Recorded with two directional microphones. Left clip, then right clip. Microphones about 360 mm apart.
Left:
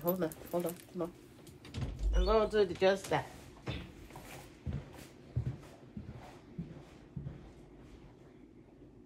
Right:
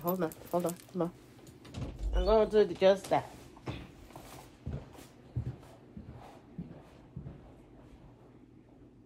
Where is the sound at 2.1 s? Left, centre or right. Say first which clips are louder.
Right 4 dB; right.